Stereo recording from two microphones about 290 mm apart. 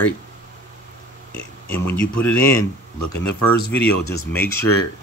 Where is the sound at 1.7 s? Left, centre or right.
Centre.